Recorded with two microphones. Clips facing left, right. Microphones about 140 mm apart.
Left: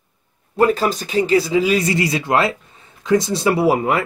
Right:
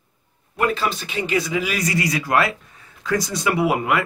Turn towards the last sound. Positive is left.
turn(degrees=30)  # may be behind; listen again after turning